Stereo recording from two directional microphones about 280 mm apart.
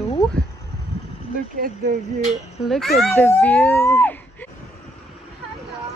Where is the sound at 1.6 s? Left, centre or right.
Right.